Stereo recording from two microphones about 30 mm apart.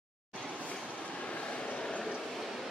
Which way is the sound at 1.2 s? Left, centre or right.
Left.